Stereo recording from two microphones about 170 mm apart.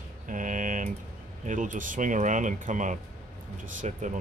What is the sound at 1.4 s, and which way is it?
Speech, 50° right (ahead or behind).